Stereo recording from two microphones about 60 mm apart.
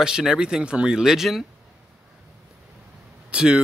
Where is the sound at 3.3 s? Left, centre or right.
Centre.